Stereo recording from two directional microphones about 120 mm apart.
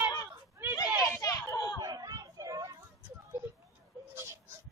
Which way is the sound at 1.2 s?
30° left (ahead or behind).